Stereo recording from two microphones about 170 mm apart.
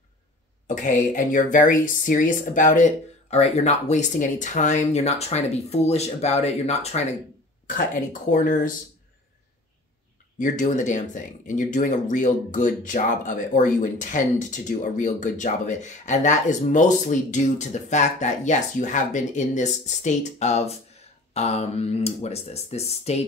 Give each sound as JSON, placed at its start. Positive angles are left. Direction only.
{"t": 0.7, "sound": "speech", "side_deg": 50}
{"t": 7.6, "sound": "speech", "side_deg": 50}
{"t": 10.4, "sound": "speech", "side_deg": 45}